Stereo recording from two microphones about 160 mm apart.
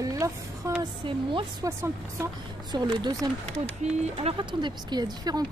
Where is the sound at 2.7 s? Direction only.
25° right (ahead or behind).